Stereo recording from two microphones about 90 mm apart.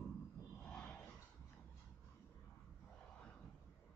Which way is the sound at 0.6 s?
5° left (ahead or behind).